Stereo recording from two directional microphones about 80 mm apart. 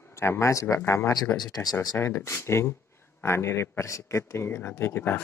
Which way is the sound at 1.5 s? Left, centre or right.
Left.